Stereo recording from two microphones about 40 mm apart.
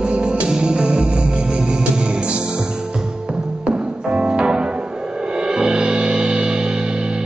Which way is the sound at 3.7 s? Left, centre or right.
Right.